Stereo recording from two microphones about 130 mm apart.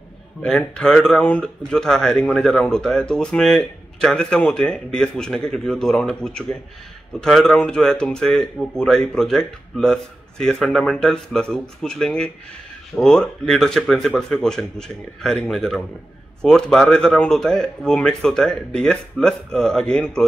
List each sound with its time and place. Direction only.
0.4 s speech: 10° left (ahead or behind)